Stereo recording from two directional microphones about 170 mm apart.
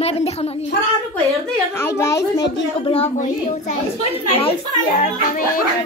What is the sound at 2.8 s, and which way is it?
A child's voice, 35° left (ahead or behind).